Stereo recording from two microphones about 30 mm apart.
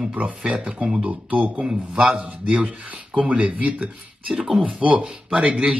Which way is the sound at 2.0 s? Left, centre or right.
Right.